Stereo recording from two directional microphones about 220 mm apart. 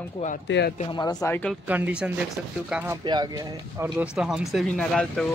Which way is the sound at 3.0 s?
20° right (ahead or behind).